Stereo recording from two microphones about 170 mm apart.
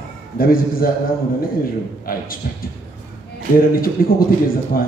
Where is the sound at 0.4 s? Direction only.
60° left (ahead or behind).